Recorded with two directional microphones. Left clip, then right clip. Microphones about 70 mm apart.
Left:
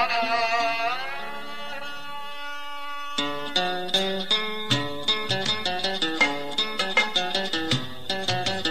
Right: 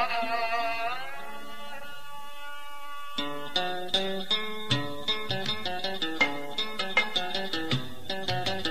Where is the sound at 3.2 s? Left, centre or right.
Right.